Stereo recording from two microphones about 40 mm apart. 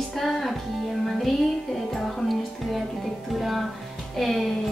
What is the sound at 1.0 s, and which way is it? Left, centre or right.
Music, centre.